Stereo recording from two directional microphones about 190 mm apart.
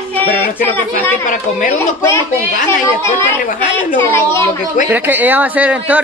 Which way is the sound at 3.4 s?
45° left (ahead or behind).